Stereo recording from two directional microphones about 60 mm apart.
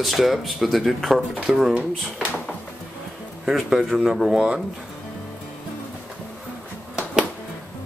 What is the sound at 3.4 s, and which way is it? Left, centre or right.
Speech, centre.